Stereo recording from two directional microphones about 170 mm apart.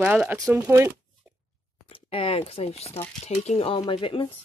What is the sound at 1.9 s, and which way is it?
Speech, 35° left (ahead or behind).